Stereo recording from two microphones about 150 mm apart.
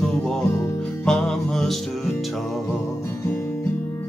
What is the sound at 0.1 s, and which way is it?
Music, 5° left (ahead or behind).